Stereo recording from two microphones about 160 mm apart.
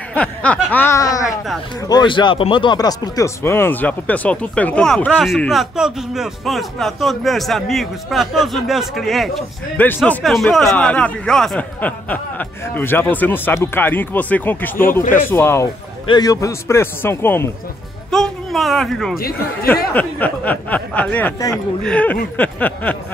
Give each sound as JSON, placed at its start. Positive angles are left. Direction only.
{"t": 0.1, "sound": "speech", "side_deg": 10}
{"t": 18.1, "sound": "speech", "side_deg": 0}
{"t": 19.1, "sound": "speech", "side_deg": 70}
{"t": 19.7, "sound": "speech", "side_deg": 10}